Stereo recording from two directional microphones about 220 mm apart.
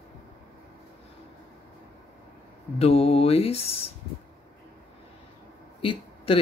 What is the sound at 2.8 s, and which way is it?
Speech, 30° left (ahead or behind).